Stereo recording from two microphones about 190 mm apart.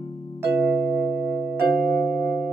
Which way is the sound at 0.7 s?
10° left (ahead or behind).